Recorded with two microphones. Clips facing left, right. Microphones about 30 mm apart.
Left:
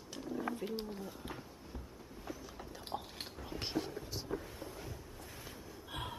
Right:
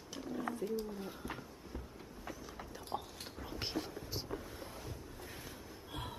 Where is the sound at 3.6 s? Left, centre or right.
Centre.